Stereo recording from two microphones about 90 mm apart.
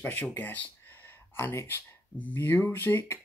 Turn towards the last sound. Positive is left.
turn(degrees=30)  # may be behind; listen again after turning